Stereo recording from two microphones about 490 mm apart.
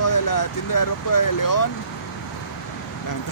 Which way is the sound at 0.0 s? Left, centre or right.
Left.